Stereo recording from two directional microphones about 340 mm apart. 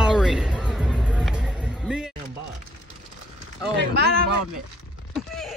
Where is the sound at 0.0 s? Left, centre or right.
Centre.